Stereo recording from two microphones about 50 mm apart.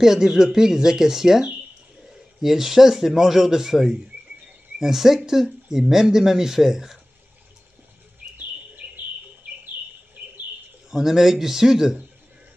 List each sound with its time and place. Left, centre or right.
0.0 s speech: centre
2.4 s speech: centre
8.8 s bird: right
10.9 s speech: centre